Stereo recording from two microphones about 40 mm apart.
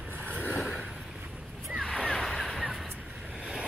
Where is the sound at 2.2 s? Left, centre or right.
Centre.